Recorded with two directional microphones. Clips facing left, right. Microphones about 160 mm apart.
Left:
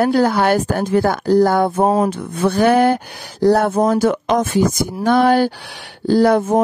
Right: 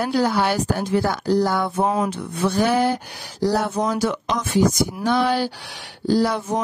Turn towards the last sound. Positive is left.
turn(degrees=50)  # may be behind; listen again after turning